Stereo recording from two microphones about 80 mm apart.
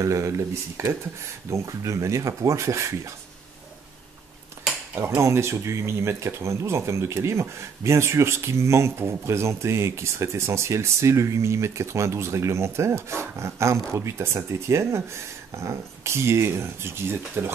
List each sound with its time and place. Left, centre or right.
0.0 s speech: right
4.9 s speech: right